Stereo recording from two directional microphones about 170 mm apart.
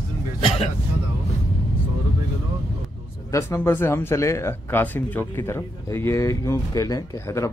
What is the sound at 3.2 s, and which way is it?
Speech, 15° left (ahead or behind).